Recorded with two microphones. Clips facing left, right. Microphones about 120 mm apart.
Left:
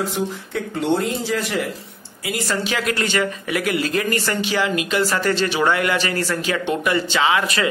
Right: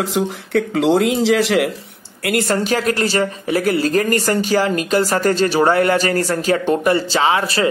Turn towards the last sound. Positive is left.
turn(degrees=-35)  # may be behind; listen again after turning